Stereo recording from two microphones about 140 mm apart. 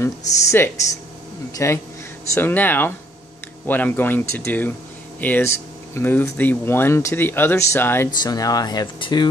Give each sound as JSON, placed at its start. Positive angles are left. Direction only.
{"t": 0.0, "sound": "speech", "side_deg": 20}